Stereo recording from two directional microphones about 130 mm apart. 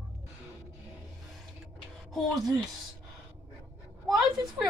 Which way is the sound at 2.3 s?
30° right (ahead or behind).